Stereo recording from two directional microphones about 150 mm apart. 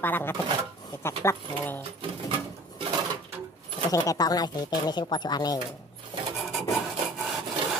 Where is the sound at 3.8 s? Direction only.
25° left (ahead or behind).